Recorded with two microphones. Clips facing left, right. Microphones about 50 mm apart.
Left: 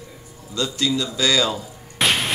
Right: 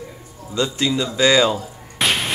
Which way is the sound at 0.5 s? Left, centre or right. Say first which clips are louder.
Right 2 dB; right.